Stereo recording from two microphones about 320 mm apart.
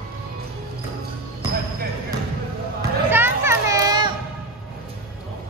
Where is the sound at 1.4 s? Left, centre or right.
Left.